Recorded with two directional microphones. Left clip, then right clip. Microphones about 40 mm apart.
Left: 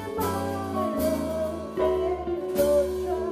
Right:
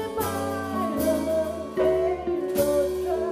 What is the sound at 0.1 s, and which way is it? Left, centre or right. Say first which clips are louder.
Music: right 1 dB; right.